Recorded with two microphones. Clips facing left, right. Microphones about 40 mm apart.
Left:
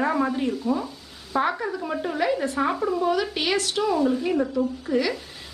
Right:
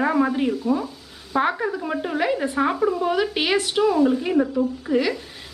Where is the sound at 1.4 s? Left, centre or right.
Centre.